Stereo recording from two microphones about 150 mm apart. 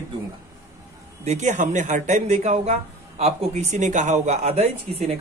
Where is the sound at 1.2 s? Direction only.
50° right (ahead or behind).